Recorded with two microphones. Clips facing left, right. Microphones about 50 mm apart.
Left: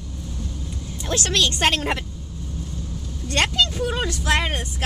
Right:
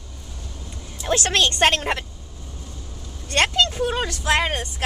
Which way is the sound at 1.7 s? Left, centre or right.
Centre.